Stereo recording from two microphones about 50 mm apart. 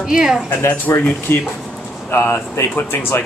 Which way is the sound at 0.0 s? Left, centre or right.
Centre.